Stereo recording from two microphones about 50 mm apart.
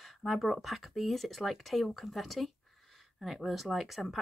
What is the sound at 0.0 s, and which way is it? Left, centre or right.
Speech, centre.